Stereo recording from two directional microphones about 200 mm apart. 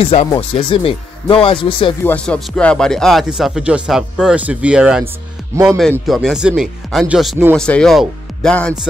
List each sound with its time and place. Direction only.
0.0 s speech: 30° left (ahead or behind)
2.0 s speech: 5° left (ahead or behind)